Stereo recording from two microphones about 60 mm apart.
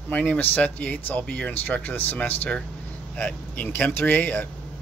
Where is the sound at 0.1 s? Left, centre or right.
Left.